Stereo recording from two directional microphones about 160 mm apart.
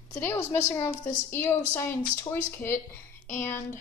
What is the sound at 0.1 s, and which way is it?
Speech, 15° left (ahead or behind).